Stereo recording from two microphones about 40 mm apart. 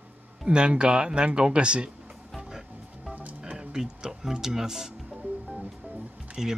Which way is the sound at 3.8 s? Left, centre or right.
Centre.